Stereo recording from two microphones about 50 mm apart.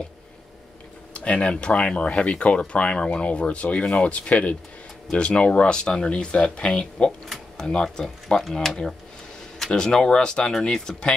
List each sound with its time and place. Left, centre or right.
1.1 s speech: left